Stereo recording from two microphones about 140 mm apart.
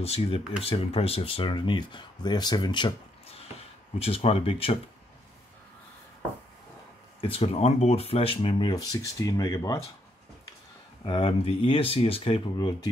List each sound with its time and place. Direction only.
0.0 s speech: 45° left (ahead or behind)
3.3 s a sound: 45° left (ahead or behind)
7.2 s speech: 40° left (ahead or behind); by 9.8 s 25° left (ahead or behind)
11.1 s speech: 40° left (ahead or behind)